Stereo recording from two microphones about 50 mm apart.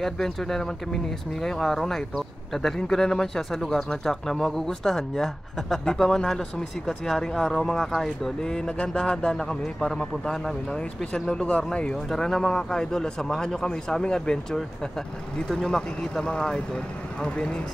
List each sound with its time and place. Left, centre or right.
0.0 s speech: centre; by 12.0 s left
12.1 s speech: centre